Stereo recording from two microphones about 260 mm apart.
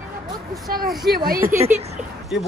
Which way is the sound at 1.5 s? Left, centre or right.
Centre.